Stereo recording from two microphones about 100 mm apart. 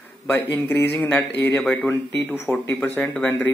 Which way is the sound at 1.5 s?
5° left (ahead or behind).